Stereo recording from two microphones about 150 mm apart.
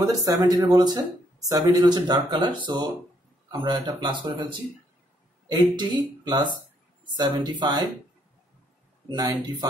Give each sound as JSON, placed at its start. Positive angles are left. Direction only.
{"t": 0.0, "sound": "speech", "side_deg": -20}
{"t": 9.1, "sound": "speech", "side_deg": -25}